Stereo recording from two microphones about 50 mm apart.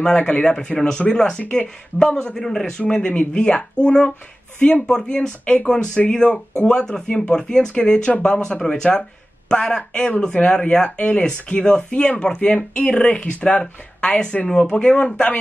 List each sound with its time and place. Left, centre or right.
0.0 s speech: left
4.8 s speech: centre